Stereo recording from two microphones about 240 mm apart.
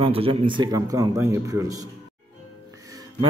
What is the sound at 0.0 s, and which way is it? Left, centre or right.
A man's voice, right.